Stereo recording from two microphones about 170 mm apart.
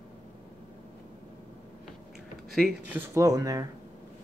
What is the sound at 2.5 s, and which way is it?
Speech, centre (ahead or behind).